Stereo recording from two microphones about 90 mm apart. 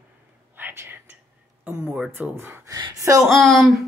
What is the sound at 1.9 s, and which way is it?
Speech, 5° right (ahead or behind).